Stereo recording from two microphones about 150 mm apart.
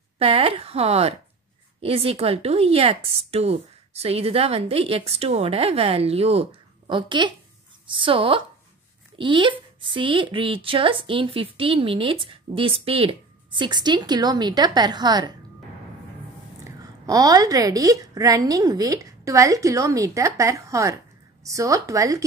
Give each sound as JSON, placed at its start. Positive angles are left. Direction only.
{"t": 0.2, "sound": "a woman's voice", "side_deg": -40}
{"t": 16.6, "sound": "a woman's voice", "side_deg": -25}